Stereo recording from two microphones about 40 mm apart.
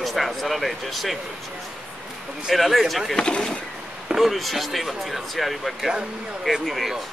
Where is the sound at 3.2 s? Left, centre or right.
Centre.